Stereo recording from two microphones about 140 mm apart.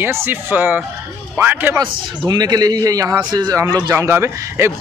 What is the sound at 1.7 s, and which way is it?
A man's voice, 30° right (ahead or behind).